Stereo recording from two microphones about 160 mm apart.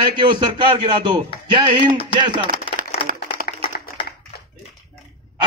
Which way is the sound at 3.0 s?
35° left (ahead or behind).